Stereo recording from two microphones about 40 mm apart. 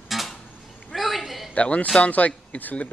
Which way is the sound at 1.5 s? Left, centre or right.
Left.